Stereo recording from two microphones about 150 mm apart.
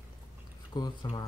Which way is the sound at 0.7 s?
30° left (ahead or behind).